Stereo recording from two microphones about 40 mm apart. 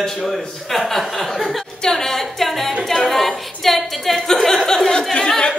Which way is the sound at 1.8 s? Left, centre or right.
Centre.